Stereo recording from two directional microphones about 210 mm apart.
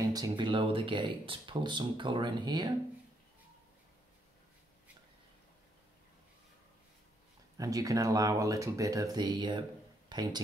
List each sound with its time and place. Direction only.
0.1 s speech: 20° right (ahead or behind)
7.5 s speech: 15° right (ahead or behind)